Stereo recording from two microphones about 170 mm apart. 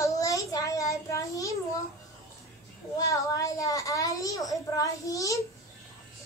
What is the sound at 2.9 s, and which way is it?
A woman's voice, 20° left (ahead or behind).